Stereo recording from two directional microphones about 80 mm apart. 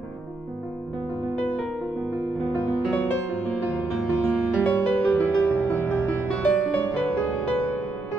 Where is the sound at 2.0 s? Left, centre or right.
Right.